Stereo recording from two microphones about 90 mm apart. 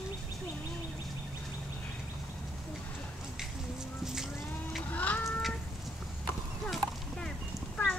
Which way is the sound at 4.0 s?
5° right (ahead or behind).